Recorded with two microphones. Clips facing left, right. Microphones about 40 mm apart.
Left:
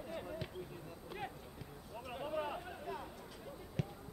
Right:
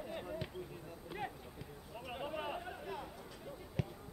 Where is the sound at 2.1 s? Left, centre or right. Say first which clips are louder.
Left 1 dB; centre.